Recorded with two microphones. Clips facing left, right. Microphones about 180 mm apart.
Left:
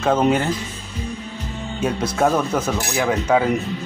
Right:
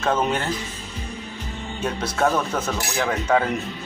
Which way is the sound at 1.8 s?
10° left (ahead or behind).